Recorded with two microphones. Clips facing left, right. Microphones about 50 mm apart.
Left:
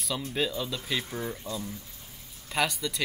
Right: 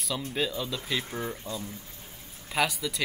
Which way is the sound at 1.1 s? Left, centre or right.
Centre.